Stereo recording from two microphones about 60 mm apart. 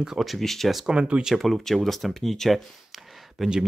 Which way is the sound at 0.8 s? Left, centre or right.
Centre.